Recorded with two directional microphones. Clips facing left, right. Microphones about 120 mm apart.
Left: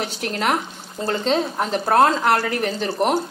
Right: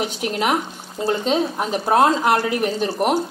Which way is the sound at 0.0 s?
10° right (ahead or behind).